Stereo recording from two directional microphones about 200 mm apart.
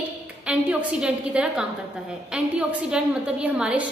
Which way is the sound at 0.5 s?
5° right (ahead or behind).